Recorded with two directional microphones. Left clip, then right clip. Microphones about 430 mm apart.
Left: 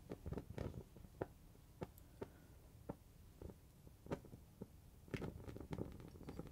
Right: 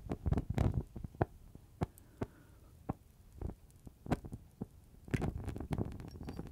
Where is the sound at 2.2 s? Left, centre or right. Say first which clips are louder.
Right 8 dB; right.